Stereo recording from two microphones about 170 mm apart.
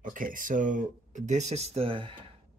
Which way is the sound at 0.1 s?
50° right (ahead or behind).